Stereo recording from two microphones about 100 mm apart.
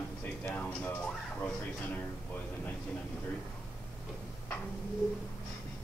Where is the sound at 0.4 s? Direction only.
15° left (ahead or behind).